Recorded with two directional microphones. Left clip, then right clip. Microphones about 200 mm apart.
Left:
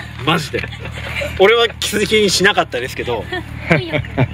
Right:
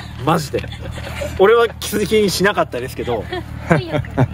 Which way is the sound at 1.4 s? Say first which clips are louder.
Even; 55° right (ahead or behind).